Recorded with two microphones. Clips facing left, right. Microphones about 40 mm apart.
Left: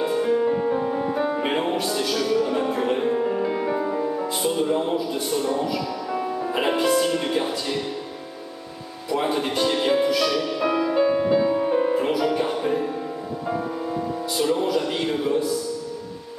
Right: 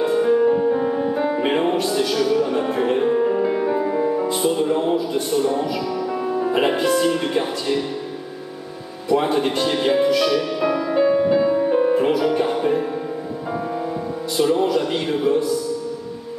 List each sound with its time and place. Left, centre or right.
0.1 s music: centre
0.7 s music: centre
1.0 s music: centre
7.1 s speech: centre
9.1 s speech: centre
10.9 s music: centre
14.3 s speech: centre